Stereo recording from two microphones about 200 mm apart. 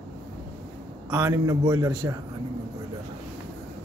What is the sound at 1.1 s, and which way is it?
A man's voice, 15° right (ahead or behind).